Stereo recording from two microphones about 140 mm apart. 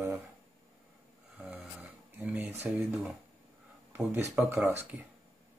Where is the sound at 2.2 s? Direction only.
10° right (ahead or behind).